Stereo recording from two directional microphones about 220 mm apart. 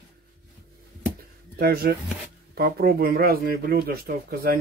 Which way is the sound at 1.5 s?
45° right (ahead or behind).